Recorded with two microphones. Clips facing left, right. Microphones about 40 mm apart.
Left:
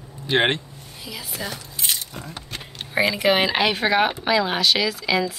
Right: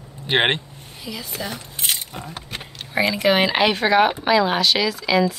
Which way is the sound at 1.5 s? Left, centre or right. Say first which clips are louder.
Right 1 dB; right.